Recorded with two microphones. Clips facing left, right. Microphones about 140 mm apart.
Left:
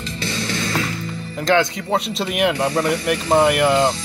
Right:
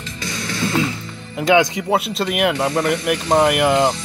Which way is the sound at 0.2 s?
30° left (ahead or behind).